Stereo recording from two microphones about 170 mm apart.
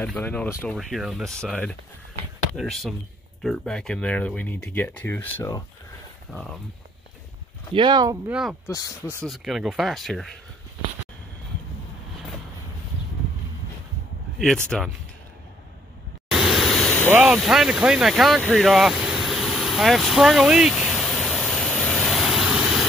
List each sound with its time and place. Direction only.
0.0 s speech: 5° left (ahead or behind)
0.7 s speech: centre (ahead or behind)
7.7 s speech: 25° right (ahead or behind)
8.3 s speech: 5° right (ahead or behind)
14.7 s speech: centre (ahead or behind)
16.3 s a sound: centre (ahead or behind)
17.1 s speech: 5° right (ahead or behind)
18.4 s vehicle: centre (ahead or behind)